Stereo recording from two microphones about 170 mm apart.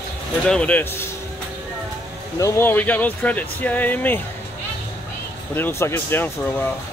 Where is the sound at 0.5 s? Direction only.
5° left (ahead or behind).